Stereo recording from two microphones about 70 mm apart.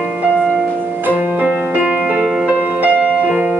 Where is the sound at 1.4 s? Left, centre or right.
Right.